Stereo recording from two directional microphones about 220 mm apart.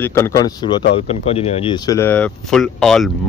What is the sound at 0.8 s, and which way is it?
Speech, 50° left (ahead or behind).